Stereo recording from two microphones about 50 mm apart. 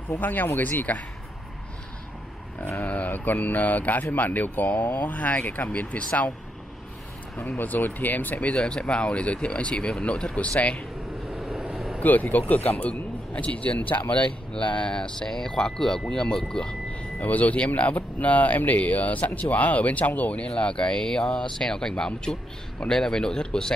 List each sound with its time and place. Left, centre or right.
0.2 s speech: left
2.9 s speech: left
7.3 s speech: left
8.5 s speech: centre
11.3 s vehicle: centre
12.0 s speech: left
12.7 s speech: left
17.2 s speech: left; by 23.7 s centre